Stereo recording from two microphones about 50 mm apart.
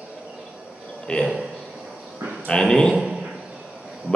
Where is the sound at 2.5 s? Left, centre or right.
Centre.